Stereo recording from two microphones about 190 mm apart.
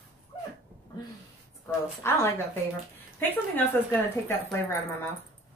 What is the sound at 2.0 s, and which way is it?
Speech, 15° left (ahead or behind).